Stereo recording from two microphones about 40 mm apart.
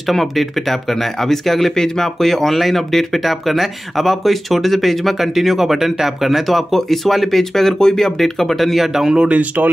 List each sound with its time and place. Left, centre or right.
0.1 s speech: centre
9.1 s speech: right